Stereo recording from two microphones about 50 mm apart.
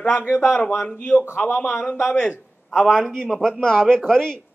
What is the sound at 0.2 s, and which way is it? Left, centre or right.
A man's voice, left.